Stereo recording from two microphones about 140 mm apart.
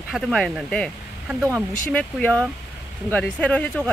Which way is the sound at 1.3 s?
15° right (ahead or behind).